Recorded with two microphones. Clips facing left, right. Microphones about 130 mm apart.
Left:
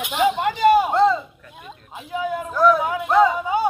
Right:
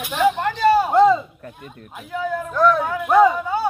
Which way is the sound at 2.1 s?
15° left (ahead or behind).